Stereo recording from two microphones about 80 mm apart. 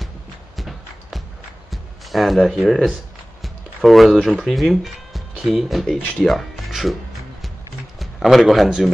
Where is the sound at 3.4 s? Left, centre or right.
Centre.